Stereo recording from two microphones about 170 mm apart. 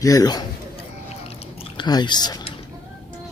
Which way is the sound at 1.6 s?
25° left (ahead or behind).